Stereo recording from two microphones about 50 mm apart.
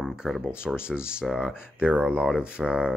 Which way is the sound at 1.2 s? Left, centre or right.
Centre.